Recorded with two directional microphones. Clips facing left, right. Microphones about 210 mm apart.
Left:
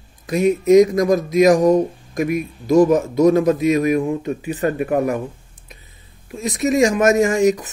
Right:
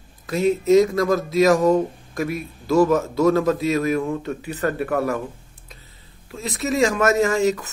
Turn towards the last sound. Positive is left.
turn(degrees=15)  # may be behind; listen again after turning